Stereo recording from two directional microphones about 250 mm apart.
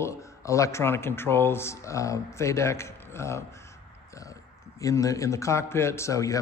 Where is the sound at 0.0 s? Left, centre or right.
Centre.